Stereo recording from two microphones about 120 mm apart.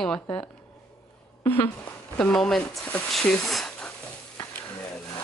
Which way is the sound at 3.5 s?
5° left (ahead or behind).